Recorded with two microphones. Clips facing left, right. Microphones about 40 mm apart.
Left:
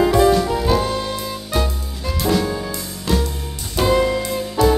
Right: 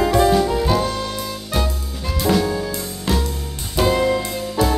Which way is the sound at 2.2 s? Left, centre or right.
Centre.